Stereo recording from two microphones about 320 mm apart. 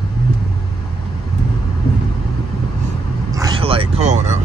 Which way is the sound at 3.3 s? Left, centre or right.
Centre.